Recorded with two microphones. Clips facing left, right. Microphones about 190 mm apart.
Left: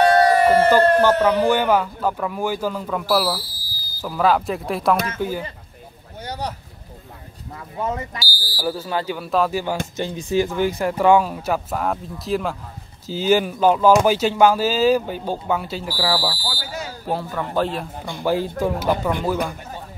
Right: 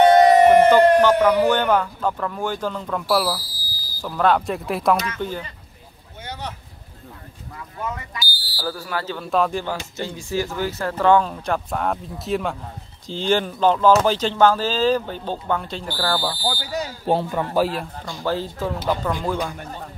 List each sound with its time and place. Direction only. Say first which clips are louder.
0.0 s a sound: right 3 dB; 20° right (ahead or behind)
1.4 s speech: left 1 dB; 10° left (ahead or behind)
6.2 s a sound: left 4 dB; 35° left (ahead or behind)
7.8 s speech: left 5 dB; 25° left (ahead or behind)
8.3 s buzzer: left 4 dB; 25° right (ahead or behind)
8.5 s speech: left 3 dB; 20° left (ahead or behind)
9.9 s speech: left 5 dB; 20° left (ahead or behind)
16.7 s speech: right 4 dB; 30° right (ahead or behind)
17.6 s speech: right 1 dB; 5° right (ahead or behind)
18.2 s speech: left 4 dB; 15° left (ahead or behind)